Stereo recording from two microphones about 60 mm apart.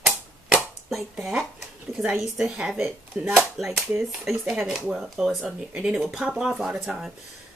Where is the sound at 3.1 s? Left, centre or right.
Right.